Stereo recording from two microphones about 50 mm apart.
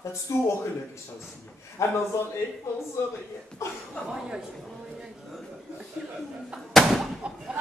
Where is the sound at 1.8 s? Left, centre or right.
Left.